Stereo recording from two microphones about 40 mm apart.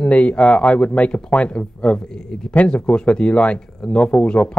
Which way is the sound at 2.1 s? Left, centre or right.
Centre.